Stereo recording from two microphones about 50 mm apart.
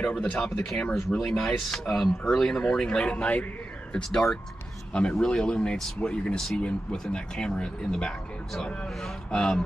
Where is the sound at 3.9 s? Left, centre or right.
Centre.